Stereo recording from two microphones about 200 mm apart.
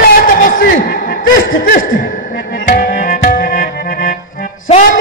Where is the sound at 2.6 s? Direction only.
50° left (ahead or behind).